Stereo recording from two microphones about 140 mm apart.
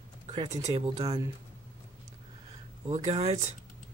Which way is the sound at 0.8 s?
45° right (ahead or behind).